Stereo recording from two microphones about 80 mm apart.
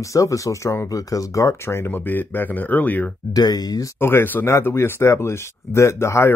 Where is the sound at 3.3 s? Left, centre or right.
Left.